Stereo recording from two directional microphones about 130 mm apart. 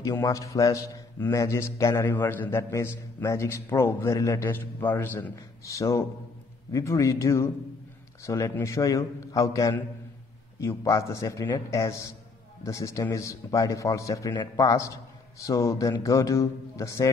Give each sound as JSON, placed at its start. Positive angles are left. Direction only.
{"t": 0.0, "sound": "a man's voice", "side_deg": 25}